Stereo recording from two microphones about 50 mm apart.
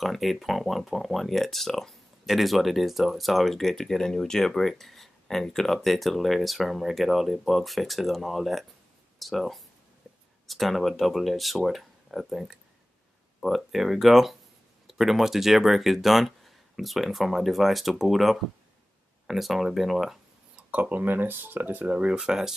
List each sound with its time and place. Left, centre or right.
0.0 s speech: centre
20.5 s a sound: right
20.9 s speech: right
21.8 s speech: right